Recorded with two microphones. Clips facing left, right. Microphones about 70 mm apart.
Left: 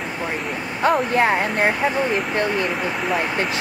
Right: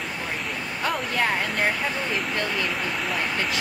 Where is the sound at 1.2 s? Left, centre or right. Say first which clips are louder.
Left 6 dB; left.